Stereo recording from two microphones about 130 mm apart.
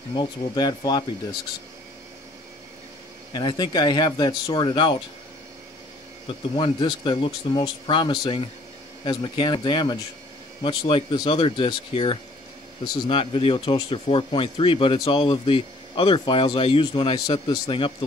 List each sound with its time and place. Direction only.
0.1 s speech: 35° left (ahead or behind)
3.3 s speech: 35° left (ahead or behind)
6.2 s speech: 40° left (ahead or behind)
12.8 s speech: 30° left (ahead or behind)
13.2 s speech: 45° left (ahead or behind)